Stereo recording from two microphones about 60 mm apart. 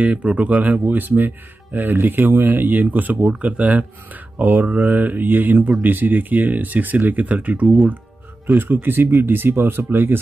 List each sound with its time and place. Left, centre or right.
0.0 s speech: right